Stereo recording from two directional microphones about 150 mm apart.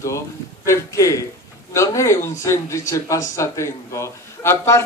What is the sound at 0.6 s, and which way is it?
Speech, 20° left (ahead or behind).